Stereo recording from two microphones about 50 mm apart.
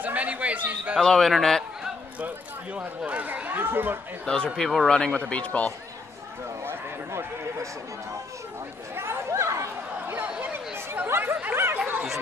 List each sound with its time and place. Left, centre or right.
0.0 s a man's voice: right
1.0 s a man's voice: centre
2.1 s a sound: right
3.1 s speech: right
4.6 s a man's voice: centre; by 5.7 s left
6.6 s a sound: right
8.9 s speech: right
9.3 s chatter: right
11.1 s speech: right
11.7 s chatter: right